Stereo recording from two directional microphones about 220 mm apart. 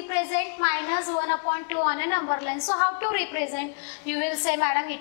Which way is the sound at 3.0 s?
10° left (ahead or behind).